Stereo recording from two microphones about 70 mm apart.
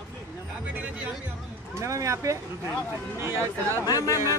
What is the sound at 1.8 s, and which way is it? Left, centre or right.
Speech, right.